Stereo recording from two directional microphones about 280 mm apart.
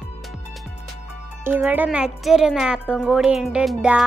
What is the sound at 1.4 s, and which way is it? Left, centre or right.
Speech, centre.